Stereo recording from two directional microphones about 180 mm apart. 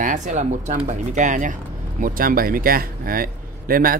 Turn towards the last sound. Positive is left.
turn(degrees=-55)  # may be behind; listen again after turning